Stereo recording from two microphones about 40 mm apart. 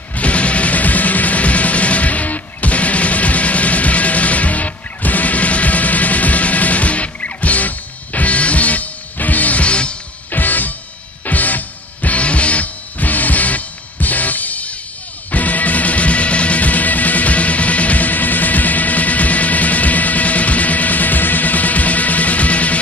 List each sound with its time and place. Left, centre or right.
0.1 s music: left
10.3 s music: left